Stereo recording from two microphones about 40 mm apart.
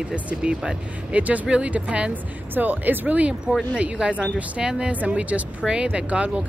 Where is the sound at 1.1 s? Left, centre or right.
Right.